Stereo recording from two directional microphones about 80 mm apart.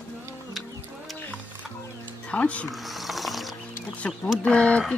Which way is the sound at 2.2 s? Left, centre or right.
Centre.